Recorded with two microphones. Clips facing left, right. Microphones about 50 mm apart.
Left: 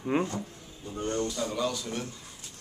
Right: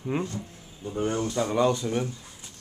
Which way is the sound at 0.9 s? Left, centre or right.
Centre.